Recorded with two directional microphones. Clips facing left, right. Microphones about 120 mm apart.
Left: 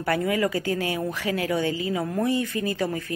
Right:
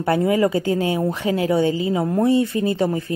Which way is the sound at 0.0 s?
25° right (ahead or behind).